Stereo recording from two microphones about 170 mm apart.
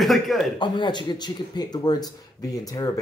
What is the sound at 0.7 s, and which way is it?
Speech, 25° left (ahead or behind).